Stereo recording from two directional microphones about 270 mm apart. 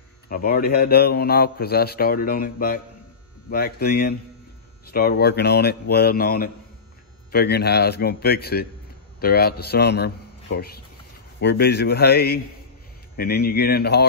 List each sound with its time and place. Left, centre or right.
0.3 s a man's voice: left